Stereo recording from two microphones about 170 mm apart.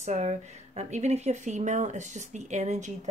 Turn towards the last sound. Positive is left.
turn(degrees=-45)  # may be behind; listen again after turning